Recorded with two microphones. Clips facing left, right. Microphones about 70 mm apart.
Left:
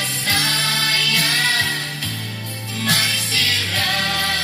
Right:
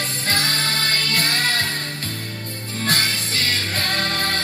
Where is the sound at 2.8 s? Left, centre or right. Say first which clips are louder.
Left 1 dB; right.